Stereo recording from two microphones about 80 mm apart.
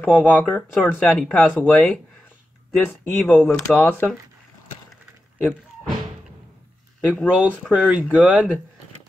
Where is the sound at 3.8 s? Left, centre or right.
Left.